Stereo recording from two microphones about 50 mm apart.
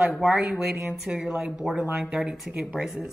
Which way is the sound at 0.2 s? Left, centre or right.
Centre.